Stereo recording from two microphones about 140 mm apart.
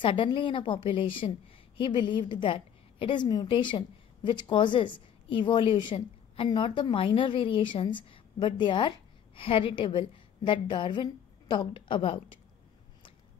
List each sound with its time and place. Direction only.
0.0 s a woman's voice: 35° left (ahead or behind)